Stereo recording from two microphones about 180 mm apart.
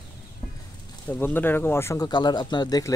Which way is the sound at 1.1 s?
10° left (ahead or behind).